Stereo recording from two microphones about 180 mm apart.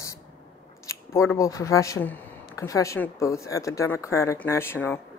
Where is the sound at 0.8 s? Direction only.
15° left (ahead or behind).